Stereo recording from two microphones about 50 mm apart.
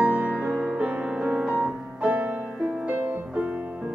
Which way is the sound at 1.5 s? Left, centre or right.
Right.